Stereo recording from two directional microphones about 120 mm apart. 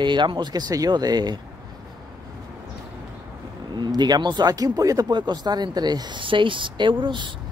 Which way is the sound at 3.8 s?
35° right (ahead or behind).